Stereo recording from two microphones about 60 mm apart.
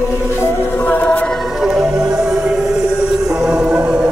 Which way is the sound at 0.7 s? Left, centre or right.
Left.